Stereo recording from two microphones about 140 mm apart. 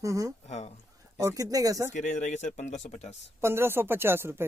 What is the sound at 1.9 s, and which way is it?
Speech, 55° left (ahead or behind).